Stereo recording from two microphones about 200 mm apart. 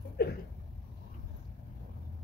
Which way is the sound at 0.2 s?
50° left (ahead or behind).